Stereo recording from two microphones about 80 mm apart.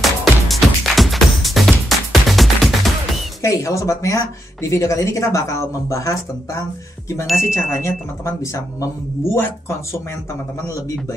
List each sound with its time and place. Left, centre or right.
0.0 s music: centre
3.4 s speech: left